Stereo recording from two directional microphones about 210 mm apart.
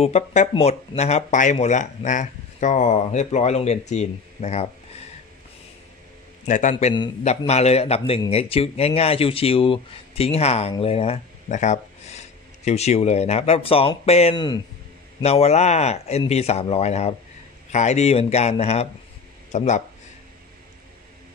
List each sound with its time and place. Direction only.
0.0 s speech: 35° left (ahead or behind)
6.4 s speech: 35° left (ahead or behind)